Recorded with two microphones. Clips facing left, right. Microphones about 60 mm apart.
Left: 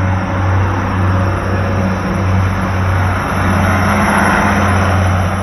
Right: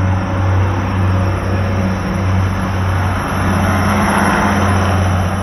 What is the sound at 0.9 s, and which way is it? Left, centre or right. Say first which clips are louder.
Vehicle: left 2 dB; left.